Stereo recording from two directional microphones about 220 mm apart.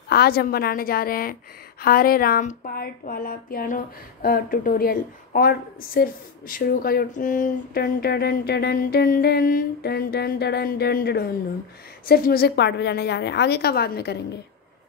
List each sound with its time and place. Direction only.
0.1 s speech: 45° left (ahead or behind)